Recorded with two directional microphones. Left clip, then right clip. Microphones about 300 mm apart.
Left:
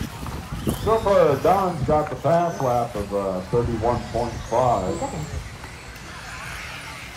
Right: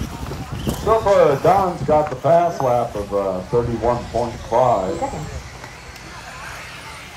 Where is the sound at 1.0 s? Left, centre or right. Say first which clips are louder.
Right 3 dB; right.